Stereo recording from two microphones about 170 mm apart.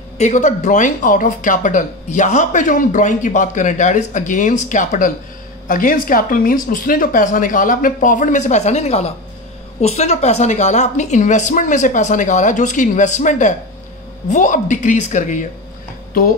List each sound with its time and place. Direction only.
0.2 s speech: 45° left (ahead or behind)